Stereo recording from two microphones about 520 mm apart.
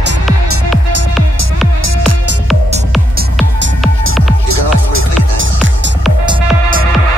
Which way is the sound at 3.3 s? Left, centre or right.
Centre.